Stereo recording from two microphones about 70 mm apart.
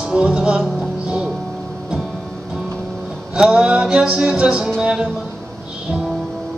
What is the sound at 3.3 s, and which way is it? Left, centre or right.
Music, centre.